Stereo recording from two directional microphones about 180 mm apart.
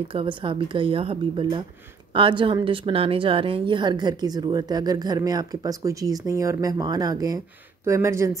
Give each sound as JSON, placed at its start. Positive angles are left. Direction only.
{"t": 0.1, "sound": "a woman's voice", "side_deg": -30}